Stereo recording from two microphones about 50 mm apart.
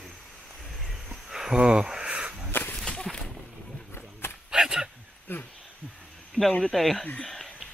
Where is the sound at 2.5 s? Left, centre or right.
Left.